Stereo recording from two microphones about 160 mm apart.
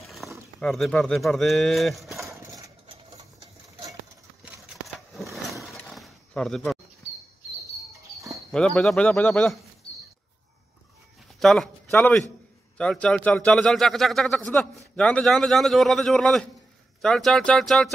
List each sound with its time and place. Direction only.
0.2 s a sound: centre (ahead or behind)
0.6 s speech: centre (ahead or behind)
2.4 s engine: 20° right (ahead or behind)
4.4 s a sound: centre (ahead or behind)
8.3 s speech: 5° left (ahead or behind)
11.3 s a man's voice: centre (ahead or behind)